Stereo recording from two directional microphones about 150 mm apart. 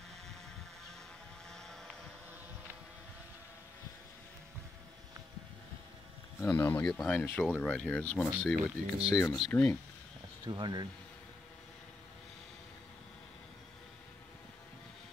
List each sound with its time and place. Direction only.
1.5 s vehicle: 5° left (ahead or behind)
6.4 s speech: 15° left (ahead or behind)
6.8 s speech: 5° left (ahead or behind)
9.1 s speech: 25° left (ahead or behind)
10.4 s speech: 30° right (ahead or behind)